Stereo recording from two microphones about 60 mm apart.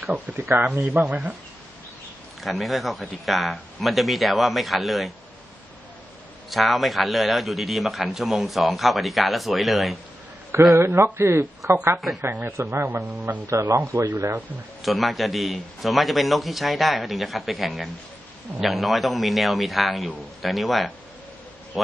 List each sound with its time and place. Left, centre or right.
0.3 s speech: right
2.4 s a man's voice: centre
6.5 s a man's voice: centre
10.8 s speech: right
12.8 s speech: right
13.5 s speech: right
13.7 s speech: right
14.8 s a man's voice: centre